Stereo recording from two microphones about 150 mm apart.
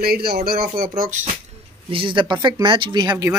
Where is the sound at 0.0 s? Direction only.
90° right; by 1.3 s 60° right (ahead or behind).